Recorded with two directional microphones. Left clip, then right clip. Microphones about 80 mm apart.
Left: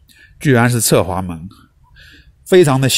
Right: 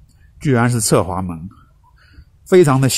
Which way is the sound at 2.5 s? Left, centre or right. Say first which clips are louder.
Left 1 dB; centre.